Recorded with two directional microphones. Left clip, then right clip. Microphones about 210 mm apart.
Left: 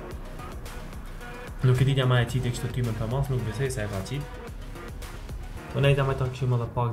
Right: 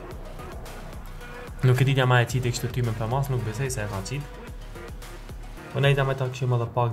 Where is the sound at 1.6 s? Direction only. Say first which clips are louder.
Right 3 dB; 40° right (ahead or behind).